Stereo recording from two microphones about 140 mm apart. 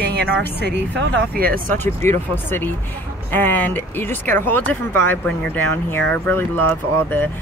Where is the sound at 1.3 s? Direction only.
90° right.